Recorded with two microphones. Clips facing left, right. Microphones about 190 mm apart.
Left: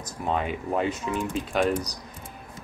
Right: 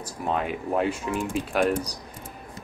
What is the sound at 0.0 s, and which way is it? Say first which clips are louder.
Speech: even; centre (ahead or behind).